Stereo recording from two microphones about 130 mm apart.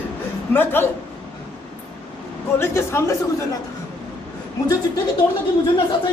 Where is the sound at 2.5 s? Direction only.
20° left (ahead or behind).